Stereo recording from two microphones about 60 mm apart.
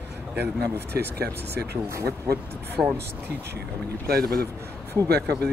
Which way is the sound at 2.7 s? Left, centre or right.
Right.